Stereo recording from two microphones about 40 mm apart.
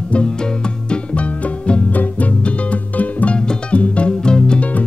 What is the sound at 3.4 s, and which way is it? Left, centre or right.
Music, centre.